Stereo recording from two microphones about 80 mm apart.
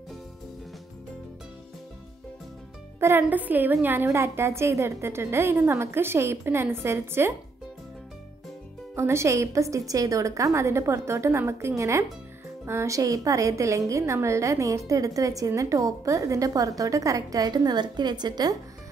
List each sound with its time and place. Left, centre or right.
3.0 s a woman's voice: right
8.9 s a woman's voice: right